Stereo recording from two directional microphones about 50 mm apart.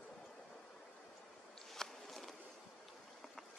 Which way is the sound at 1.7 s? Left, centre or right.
Centre.